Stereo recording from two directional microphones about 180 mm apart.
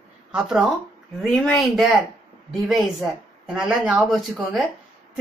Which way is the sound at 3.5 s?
5° right (ahead or behind).